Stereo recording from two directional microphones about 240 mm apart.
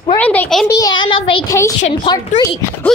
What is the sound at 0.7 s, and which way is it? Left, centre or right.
Child singing, centre.